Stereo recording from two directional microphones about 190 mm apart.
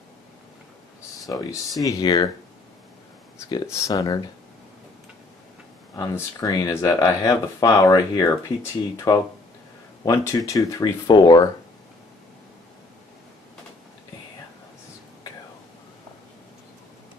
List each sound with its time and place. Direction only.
1.2 s speech: 20° left (ahead or behind)
3.3 s speech: 20° left (ahead or behind)
5.9 s speech: 20° left (ahead or behind)